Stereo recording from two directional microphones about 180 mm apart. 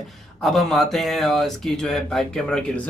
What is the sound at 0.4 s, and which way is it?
Speech, centre (ahead or behind).